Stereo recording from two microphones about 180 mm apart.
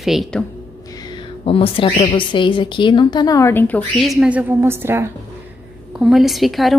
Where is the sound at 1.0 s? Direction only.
30° left (ahead or behind).